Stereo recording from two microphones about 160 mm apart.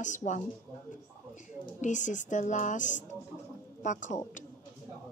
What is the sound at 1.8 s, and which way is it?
Speech, 50° left (ahead or behind).